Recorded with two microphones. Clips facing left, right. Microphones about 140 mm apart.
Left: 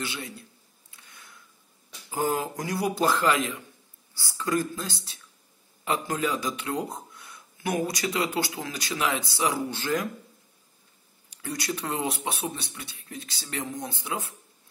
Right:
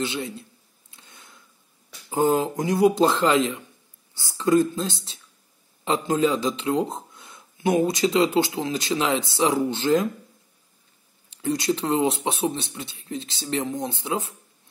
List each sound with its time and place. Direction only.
0.0 s a sound: 20° right (ahead or behind)
2.0 s speech: 25° right (ahead or behind)
11.2 s speech: 25° right (ahead or behind)